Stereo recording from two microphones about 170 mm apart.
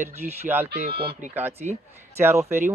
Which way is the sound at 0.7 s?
70° right (ahead or behind).